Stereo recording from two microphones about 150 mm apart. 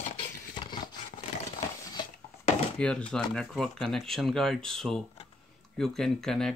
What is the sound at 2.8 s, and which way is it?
Speech, 5° left (ahead or behind).